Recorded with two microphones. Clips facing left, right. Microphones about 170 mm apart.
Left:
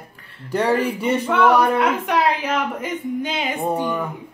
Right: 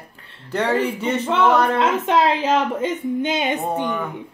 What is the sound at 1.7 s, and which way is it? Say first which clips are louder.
Speech: right 1 dB; 25° right (ahead or behind).